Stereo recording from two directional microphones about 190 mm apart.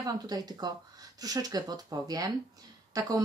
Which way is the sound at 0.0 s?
20° right (ahead or behind).